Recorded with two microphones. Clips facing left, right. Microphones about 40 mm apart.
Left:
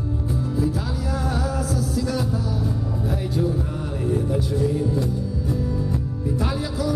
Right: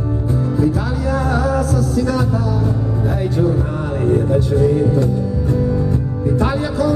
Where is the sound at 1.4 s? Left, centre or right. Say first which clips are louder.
Right 8 dB; right.